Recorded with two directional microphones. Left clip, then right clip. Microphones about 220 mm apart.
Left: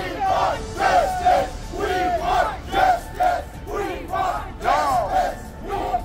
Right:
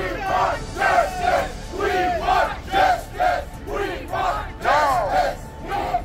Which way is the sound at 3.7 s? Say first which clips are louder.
Even; 20° left (ahead or behind).